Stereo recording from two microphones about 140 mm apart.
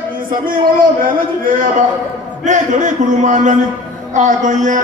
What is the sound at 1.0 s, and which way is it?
Speech, 80° right.